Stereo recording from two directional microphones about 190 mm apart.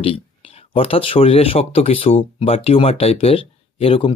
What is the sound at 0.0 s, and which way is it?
Speech, 30° left (ahead or behind).